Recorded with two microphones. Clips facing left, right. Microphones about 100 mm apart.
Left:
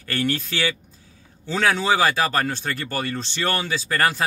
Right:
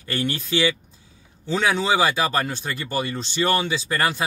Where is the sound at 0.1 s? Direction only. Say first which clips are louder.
Left 1 dB; 15° right (ahead or behind).